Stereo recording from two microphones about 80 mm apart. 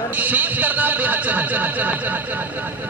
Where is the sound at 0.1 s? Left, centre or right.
Right.